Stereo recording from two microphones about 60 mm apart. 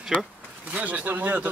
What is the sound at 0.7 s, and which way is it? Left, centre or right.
Speech, right.